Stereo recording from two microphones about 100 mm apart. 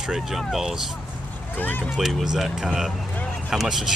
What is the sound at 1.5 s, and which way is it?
Speech, 20° left (ahead or behind).